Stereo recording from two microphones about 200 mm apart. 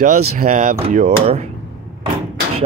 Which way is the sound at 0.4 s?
40° right (ahead or behind).